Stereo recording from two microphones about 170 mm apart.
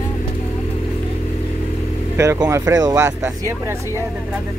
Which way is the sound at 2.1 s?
20° right (ahead or behind).